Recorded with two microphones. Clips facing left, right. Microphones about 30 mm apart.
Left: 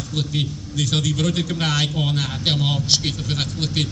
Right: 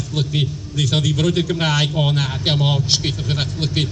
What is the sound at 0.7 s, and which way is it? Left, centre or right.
A man's voice, right.